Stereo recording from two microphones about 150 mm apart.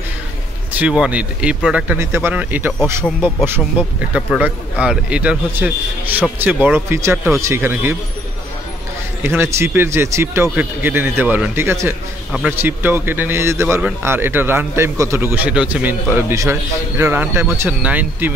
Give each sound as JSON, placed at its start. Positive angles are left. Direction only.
{"t": 0.7, "sound": "speech", "side_deg": -5}
{"t": 9.2, "sound": "speech", "side_deg": -15}